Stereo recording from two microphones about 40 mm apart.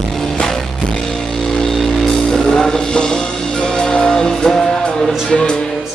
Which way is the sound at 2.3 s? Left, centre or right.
Centre.